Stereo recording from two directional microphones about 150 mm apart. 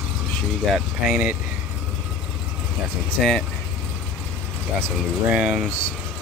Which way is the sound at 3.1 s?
5° left (ahead or behind).